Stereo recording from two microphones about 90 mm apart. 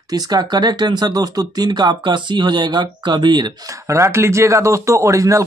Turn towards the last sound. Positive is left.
turn(degrees=-35)  # may be behind; listen again after turning